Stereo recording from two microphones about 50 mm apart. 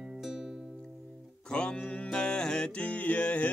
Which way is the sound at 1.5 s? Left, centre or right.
Centre.